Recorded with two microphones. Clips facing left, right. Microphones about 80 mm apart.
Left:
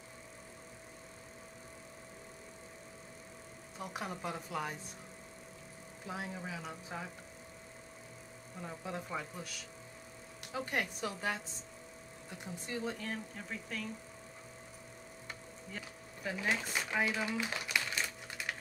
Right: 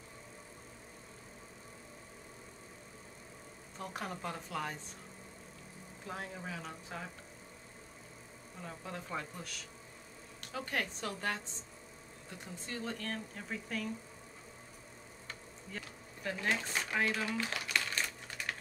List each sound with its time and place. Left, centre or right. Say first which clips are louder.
3.7 s a woman's voice: even; centre
6.0 s a woman's voice: left 1 dB; centre
8.6 s a woman's voice: left 2 dB; centre
9.2 s a man's voice: left 1 dB; centre
10.4 s a woman's voice: left 1 dB; centre
12.6 s a woman's voice: left 1 dB; centre
13.5 s a man's voice: right 3 dB; centre
15.7 s speech: right 1 dB; centre